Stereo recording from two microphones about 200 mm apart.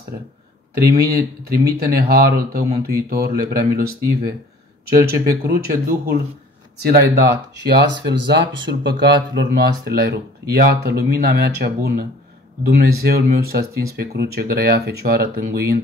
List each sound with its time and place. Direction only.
0.7 s speech: 50° right (ahead or behind)